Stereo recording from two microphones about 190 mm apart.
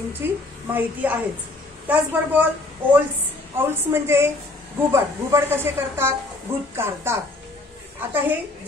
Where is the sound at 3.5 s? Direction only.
10° right (ahead or behind).